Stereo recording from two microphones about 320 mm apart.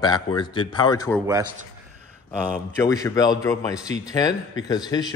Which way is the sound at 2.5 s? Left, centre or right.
Centre.